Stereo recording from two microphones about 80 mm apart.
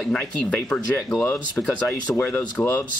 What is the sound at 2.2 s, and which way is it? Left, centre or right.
Speech, left.